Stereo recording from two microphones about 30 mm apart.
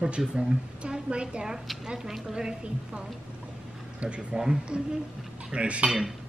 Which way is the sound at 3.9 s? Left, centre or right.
Right.